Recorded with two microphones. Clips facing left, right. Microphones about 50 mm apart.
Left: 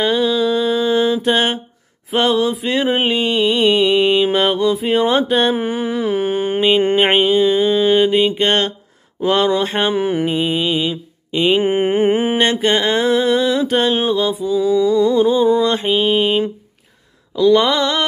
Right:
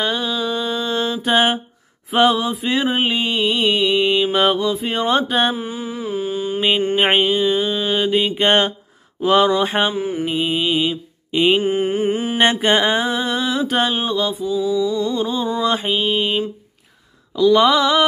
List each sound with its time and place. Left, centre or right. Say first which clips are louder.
0.0 s mantra: left 6 dB; centre
5.5 s mantra: left 6 dB; left
7.0 s mantra: left 3 dB; centre
9.9 s mantra: left 5 dB; left
10.2 s mantra: left 2 dB; centre
11.6 s mantra: left 4 dB; left
12.4 s mantra: even; centre
14.4 s mantra: left 5 dB; left
15.1 s mantra: left 8 dB; centre
15.6 s mantra: left 3 dB; centre
17.4 s mantra: even; centre